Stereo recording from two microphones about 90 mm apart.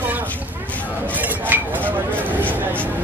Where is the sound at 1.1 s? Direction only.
20° right (ahead or behind).